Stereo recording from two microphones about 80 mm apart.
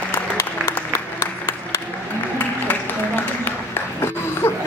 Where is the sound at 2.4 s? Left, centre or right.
Left.